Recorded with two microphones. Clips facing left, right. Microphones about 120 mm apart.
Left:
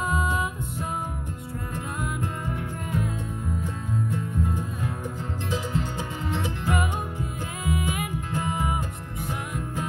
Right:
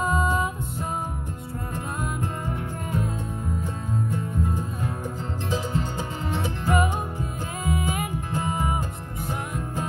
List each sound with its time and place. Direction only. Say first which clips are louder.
0.0 s music: right 3 dB; 30° right (ahead or behind)
2.0 s music: right 1 dB; 35° right (ahead or behind)
4.1 s music: right 1 dB; 35° right (ahead or behind)